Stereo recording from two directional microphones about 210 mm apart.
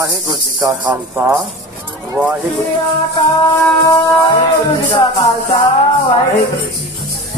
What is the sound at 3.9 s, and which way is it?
Music, 15° left (ahead or behind).